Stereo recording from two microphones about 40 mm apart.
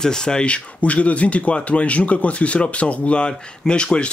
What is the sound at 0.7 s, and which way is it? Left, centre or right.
Speech, left.